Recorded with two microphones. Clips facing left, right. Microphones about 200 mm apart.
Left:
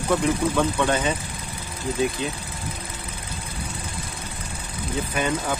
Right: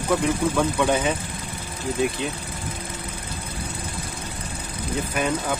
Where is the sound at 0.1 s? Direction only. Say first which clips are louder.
Even; 5° right (ahead or behind).